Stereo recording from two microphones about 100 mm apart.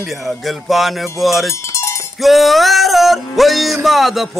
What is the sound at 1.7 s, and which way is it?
Cowbell, 30° left (ahead or behind).